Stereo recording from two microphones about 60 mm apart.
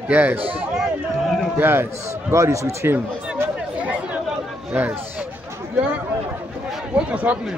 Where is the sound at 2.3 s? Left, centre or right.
Right.